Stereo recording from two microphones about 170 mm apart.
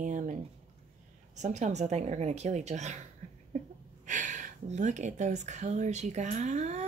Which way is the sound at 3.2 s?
40° right (ahead or behind).